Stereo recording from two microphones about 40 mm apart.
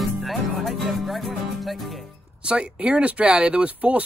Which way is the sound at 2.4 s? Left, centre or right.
Right.